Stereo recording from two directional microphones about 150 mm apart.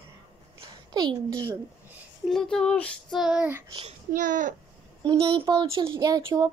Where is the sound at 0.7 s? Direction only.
30° right (ahead or behind).